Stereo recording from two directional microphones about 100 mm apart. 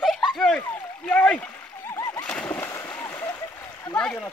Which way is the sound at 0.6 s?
15° left (ahead or behind).